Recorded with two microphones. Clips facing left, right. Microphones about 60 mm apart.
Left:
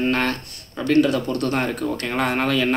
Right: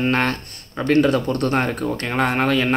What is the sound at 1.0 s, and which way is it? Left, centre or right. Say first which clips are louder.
Speech: right 1 dB; right.